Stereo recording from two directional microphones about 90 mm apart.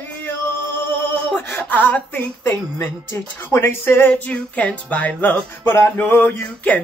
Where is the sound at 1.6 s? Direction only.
20° left (ahead or behind).